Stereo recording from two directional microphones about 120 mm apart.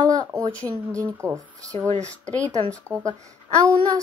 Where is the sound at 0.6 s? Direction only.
10° left (ahead or behind).